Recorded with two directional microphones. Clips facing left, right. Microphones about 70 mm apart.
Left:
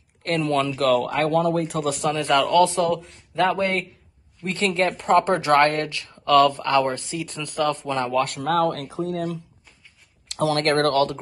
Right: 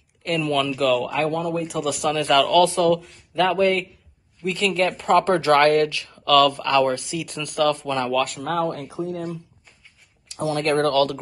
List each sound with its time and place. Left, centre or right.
0.2 s speech: left
0.7 s speech: left
1.2 s speech: left
1.9 s a man's voice: left
8.3 s speech: left
10.2 s a sound: left
10.7 s speech: left